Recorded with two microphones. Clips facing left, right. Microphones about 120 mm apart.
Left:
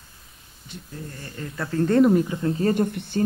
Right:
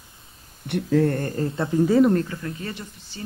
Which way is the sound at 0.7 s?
80° right.